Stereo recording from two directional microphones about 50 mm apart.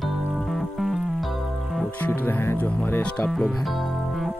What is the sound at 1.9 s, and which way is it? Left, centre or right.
Speech, left.